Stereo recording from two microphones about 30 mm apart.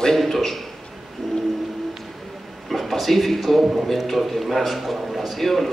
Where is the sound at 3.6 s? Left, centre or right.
Centre.